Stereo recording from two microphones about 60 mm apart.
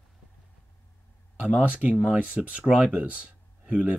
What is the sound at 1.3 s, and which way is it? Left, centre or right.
Speech, right.